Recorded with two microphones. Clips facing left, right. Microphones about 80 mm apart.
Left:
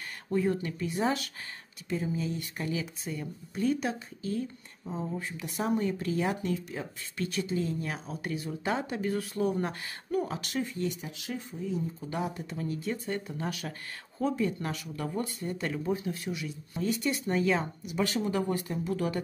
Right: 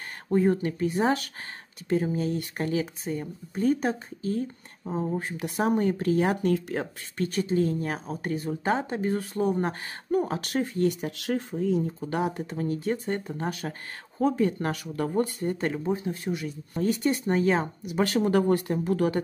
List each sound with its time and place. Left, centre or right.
0.3 s speech: right
6.5 s speech: right
7.2 s speech: right
12.1 s speech: right